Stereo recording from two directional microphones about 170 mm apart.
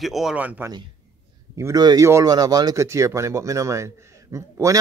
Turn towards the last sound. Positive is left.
turn(degrees=-20)  # may be behind; listen again after turning